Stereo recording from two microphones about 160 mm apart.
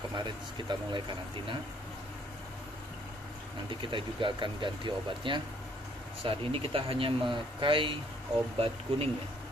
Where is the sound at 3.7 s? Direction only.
30° right (ahead or behind).